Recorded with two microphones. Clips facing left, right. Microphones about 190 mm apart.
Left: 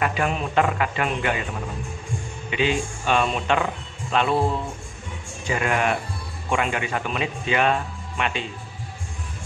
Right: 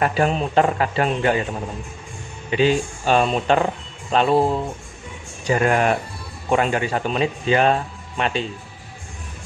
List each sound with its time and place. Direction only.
0.0 s speech: 35° right (ahead or behind)
2.5 s speech: 35° right (ahead or behind)
5.5 s speech: 40° right (ahead or behind)